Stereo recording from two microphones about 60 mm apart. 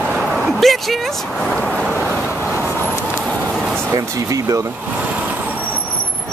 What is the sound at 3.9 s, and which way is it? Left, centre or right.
Speech, right.